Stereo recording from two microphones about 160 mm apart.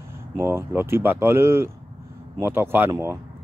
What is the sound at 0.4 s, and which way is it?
Speech, 15° right (ahead or behind).